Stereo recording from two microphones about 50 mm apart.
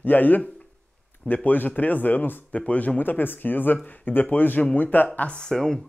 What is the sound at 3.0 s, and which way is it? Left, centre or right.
Speech, left.